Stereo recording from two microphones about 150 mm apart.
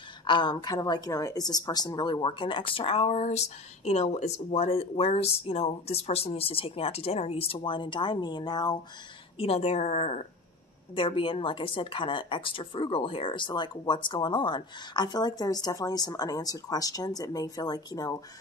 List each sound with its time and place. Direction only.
0.3 s speech: 30° left (ahead or behind)
9.4 s a woman's voice: 45° left (ahead or behind)
11.0 s speech: 35° left (ahead or behind)